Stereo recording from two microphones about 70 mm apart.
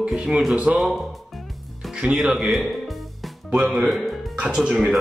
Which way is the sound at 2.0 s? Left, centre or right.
Centre.